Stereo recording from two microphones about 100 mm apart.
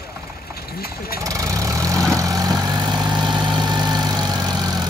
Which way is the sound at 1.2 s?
35° right (ahead or behind).